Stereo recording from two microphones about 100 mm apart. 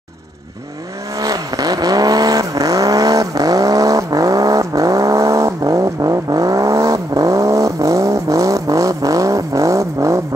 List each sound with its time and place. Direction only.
1.2 s vehicle: 40° right (ahead or behind)